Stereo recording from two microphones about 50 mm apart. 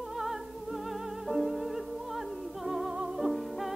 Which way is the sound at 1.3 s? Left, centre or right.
Centre.